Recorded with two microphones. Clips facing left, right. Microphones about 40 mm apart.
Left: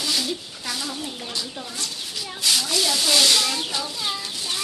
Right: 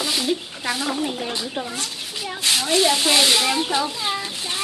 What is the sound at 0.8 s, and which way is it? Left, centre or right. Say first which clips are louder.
Speech: right 7 dB; right.